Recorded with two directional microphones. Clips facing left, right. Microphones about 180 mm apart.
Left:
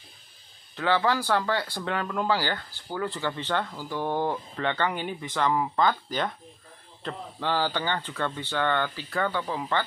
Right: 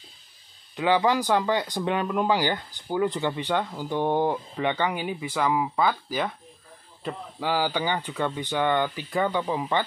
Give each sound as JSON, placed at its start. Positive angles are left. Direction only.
{"t": 0.7, "sound": "speech", "side_deg": -15}